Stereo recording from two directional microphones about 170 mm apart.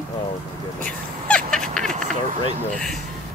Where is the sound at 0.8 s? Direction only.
5° left (ahead or behind).